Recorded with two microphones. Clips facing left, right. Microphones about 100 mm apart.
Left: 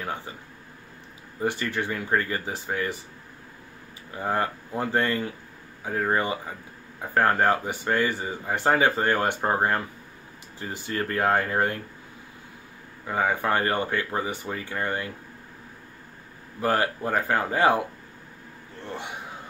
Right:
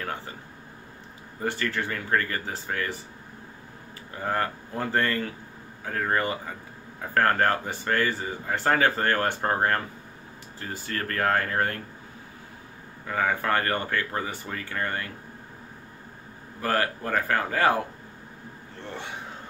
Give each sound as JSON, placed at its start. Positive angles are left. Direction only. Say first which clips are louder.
{"t": 1.4, "sound": "speech", "louder": "left 1 dB", "side_deg": 20}
{"t": 4.1, "sound": "speech", "louder": "left 1 dB", "side_deg": 15}
{"t": 13.0, "sound": "speech", "louder": "left 1 dB", "side_deg": 20}
{"t": 16.6, "sound": "speech", "louder": "left 2 dB", "side_deg": 20}